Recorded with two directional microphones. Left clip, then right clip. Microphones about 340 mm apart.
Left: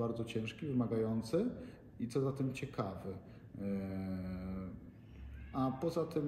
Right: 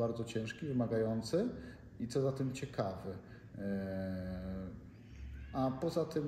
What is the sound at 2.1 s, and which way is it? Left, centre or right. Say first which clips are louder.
A man's voice: right 2 dB; centre.